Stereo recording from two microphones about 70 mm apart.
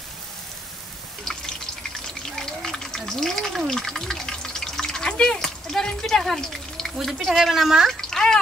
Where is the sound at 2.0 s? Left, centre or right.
Centre.